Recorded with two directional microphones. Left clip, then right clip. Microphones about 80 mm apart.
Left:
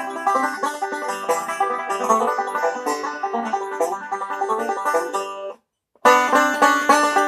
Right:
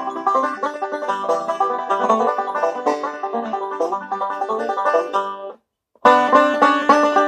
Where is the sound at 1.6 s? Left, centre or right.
Right.